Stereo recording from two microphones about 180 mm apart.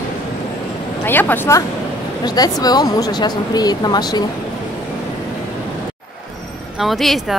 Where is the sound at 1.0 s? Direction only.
10° left (ahead or behind).